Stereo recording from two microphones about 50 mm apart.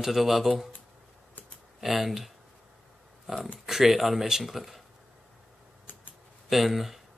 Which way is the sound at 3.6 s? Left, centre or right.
Centre.